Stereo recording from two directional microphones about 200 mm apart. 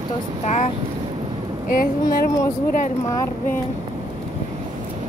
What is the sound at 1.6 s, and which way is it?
Speech, 45° left (ahead or behind).